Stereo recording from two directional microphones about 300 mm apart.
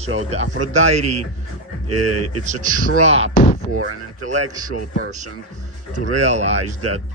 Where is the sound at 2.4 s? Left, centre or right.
Right.